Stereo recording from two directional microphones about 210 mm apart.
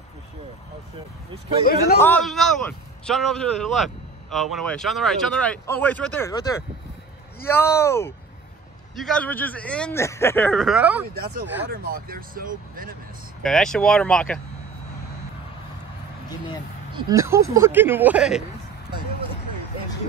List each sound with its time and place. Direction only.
2.0 s speech: 10° left (ahead or behind)
11.1 s speech: 45° right (ahead or behind)
13.4 s speech: centre (ahead or behind)
16.9 s speech: 15° right (ahead or behind)